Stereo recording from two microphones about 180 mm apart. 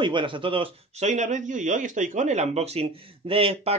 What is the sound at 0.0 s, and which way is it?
Speech, 25° right (ahead or behind).